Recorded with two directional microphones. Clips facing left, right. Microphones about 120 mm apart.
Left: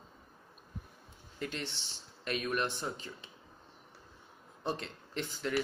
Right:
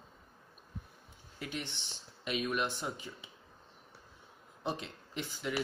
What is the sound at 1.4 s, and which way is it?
Speech, 10° right (ahead or behind).